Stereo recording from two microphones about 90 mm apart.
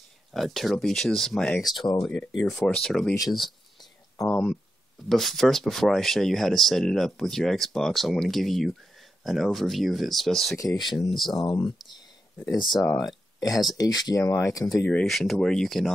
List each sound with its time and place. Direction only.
0.3 s speech: centre (ahead or behind)
4.3 s speech: 10° left (ahead or behind)
10.5 s speech: 40° left (ahead or behind)
10.9 s speech: centre (ahead or behind)
11.3 s speech: 50° left (ahead or behind)
13.0 s speech: 45° left (ahead or behind)
15.0 s speech: centre (ahead or behind)